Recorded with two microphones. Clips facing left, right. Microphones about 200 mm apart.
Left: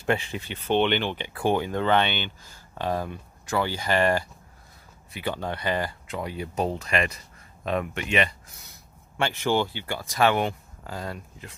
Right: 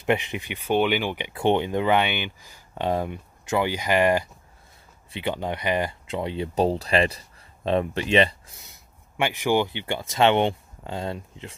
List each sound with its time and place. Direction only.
0.0 s speech: 20° right (ahead or behind)
9.1 s speech: 15° right (ahead or behind)